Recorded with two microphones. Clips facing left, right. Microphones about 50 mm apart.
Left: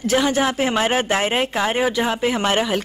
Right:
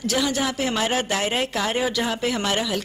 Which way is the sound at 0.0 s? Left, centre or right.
Left.